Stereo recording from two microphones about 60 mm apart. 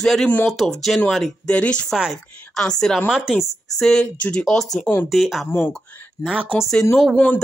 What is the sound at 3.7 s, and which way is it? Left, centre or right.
Speech, centre.